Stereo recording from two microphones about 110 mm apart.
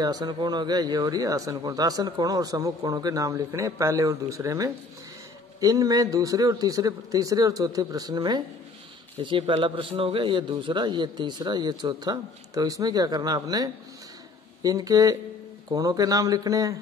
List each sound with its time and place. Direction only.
0.0 s a man's voice: 40° right (ahead or behind)
9.2 s a man's voice: 50° right (ahead or behind); by 16.7 s 30° right (ahead or behind)